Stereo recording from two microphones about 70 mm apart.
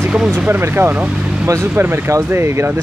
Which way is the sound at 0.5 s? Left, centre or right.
Right.